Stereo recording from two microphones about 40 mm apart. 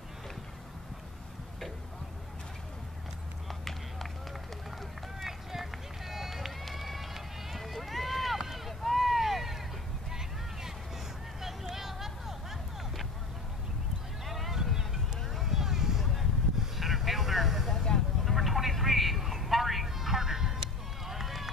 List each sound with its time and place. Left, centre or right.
3.4 s run: centre
5.2 s run: centre
8.5 s rowboat: centre
11.4 s a sound: centre
14.2 s a sound: centre
16.7 s vehicle: centre
21.1 s run: centre